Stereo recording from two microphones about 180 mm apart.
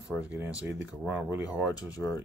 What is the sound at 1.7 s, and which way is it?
Speech, 20° left (ahead or behind).